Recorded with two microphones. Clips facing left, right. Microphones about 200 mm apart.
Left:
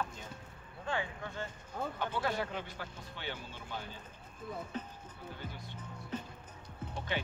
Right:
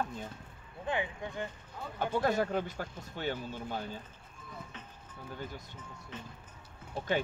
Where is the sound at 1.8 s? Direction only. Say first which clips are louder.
Left 5 dB; 50° left (ahead or behind).